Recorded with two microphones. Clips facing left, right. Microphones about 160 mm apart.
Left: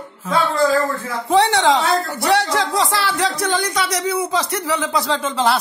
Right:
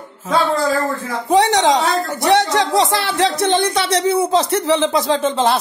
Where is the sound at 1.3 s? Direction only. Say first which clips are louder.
Right 1 dB; 15° right (ahead or behind).